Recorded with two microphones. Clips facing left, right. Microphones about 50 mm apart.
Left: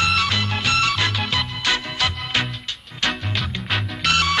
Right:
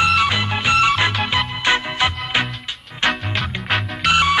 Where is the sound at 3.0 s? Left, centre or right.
Centre.